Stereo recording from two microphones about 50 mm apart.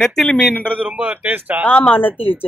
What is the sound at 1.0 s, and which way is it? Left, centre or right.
Speech, right.